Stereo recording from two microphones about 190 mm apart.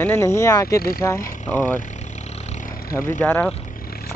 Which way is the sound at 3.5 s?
45° left (ahead or behind).